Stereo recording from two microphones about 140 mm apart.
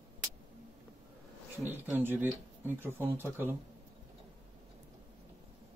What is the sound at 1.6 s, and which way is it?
Speech, 10° right (ahead or behind).